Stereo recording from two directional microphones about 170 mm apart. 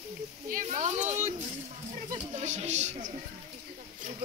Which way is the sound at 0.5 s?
50° right (ahead or behind).